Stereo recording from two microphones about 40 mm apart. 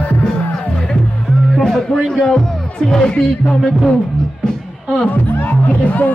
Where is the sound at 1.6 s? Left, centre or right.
Centre.